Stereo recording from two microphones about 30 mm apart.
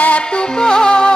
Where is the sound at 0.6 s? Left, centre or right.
Left.